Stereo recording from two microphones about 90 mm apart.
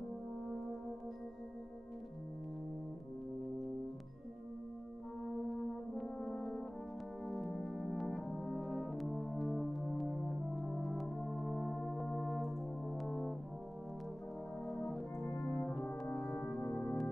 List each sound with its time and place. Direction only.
5.9 s french horn: 5° left (ahead or behind)
7.2 s brass instrument: centre (ahead or behind)
14.6 s music: centre (ahead or behind)
15.4 s brass instrument: 5° left (ahead or behind)
16.6 s music: 10° left (ahead or behind)